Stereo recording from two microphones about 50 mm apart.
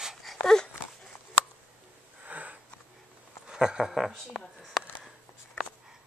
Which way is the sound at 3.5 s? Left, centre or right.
Centre.